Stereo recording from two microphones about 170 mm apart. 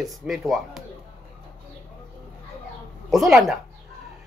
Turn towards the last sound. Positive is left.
turn(degrees=0)  # may be behind; listen again after turning